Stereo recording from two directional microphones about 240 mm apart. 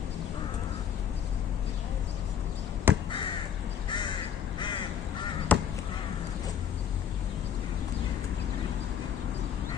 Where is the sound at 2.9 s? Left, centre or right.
Centre.